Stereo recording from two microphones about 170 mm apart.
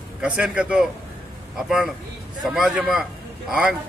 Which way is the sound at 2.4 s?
Centre (ahead or behind).